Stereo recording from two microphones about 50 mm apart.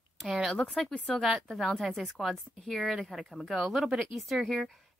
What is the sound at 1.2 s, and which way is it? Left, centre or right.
Speech, centre.